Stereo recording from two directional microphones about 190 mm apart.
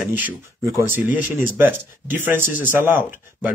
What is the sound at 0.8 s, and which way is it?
Speech, 10° right (ahead or behind).